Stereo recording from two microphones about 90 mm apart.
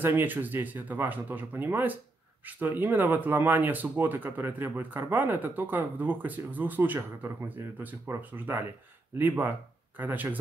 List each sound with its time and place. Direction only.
0.0 s speech: 20° right (ahead or behind)